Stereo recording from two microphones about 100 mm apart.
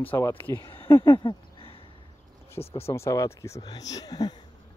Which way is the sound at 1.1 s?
65° left (ahead or behind).